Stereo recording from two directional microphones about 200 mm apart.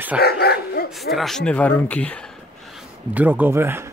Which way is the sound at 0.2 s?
50° left (ahead or behind).